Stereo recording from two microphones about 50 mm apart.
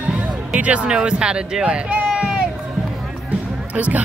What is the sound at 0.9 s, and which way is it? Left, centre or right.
Speech, centre.